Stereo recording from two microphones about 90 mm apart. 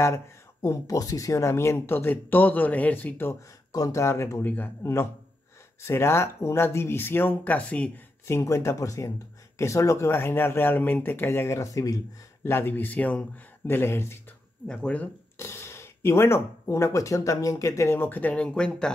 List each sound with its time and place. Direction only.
0.0 s speech: 35° left (ahead or behind)
3.7 s speech: 40° left (ahead or behind); by 4.6 s 25° left (ahead or behind)
5.8 s speech: 30° left (ahead or behind)
8.3 s speech: 35° left (ahead or behind)
12.4 s speech: 25° left (ahead or behind)
14.7 s speech: 15° left (ahead or behind)
15.3 s speech: 30° left (ahead or behind)
17.8 s speech: 20° left (ahead or behind)